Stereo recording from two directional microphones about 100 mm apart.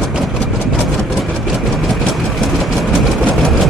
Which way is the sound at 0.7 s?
Centre (ahead or behind).